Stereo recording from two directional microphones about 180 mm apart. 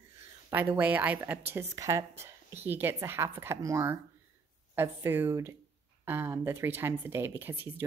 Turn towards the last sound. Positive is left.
turn(degrees=-10)  # may be behind; listen again after turning